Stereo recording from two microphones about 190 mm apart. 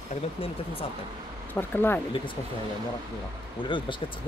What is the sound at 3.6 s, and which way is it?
Speech, 25° left (ahead or behind).